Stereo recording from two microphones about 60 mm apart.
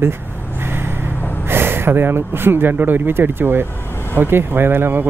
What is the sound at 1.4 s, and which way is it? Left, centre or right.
Speech, right.